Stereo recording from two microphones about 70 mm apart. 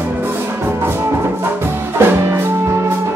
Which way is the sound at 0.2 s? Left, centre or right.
Right.